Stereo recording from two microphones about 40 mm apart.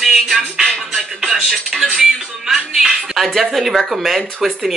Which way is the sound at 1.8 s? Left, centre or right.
Centre.